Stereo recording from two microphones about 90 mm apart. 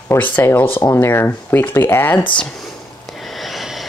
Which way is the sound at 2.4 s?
5° left (ahead or behind).